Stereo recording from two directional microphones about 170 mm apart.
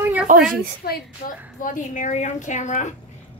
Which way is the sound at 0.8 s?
65° left (ahead or behind).